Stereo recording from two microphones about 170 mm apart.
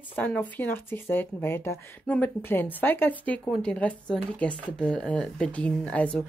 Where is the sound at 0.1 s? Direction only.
10° left (ahead or behind).